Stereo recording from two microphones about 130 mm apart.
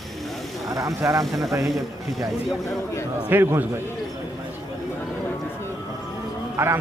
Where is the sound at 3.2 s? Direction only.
15° right (ahead or behind).